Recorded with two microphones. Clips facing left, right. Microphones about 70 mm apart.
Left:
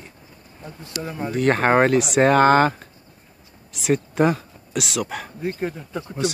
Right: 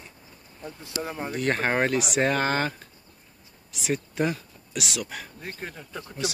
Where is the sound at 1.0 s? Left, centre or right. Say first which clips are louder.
Left 3 dB; right.